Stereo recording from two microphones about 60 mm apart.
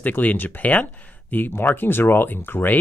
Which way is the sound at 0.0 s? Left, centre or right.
Left.